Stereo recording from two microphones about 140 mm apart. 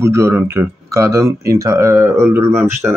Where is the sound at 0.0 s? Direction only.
20° right (ahead or behind).